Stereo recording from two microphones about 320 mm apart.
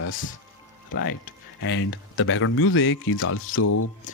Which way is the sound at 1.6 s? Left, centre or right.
Left.